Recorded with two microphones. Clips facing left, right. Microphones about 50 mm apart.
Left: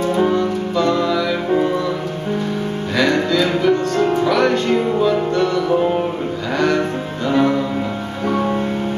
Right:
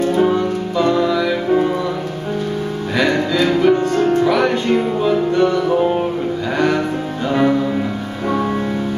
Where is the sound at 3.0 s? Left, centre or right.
Centre.